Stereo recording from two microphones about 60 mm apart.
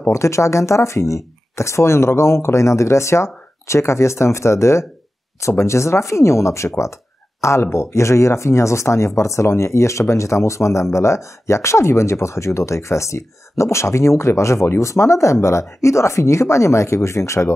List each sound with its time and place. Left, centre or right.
0.0 s speech: left